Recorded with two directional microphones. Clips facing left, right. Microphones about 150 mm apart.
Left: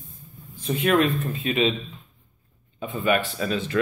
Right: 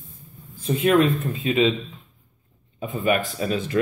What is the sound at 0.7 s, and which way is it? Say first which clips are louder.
Speech: right 3 dB; 25° right (ahead or behind).